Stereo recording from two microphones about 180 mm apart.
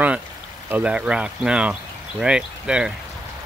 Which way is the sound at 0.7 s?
10° right (ahead or behind).